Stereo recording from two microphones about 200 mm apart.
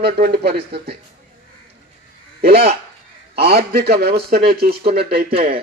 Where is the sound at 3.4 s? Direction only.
50° right (ahead or behind).